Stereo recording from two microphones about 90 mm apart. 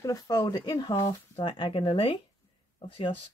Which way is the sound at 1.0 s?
80° left.